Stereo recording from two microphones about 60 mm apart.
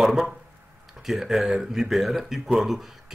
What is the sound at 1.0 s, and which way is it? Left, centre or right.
Speech, centre.